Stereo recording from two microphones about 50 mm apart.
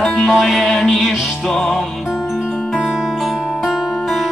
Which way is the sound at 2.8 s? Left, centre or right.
Centre.